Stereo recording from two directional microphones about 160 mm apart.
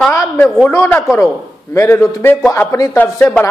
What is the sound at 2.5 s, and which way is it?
Speech, 20° left (ahead or behind).